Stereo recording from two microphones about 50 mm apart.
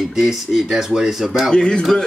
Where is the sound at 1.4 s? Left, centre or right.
Centre.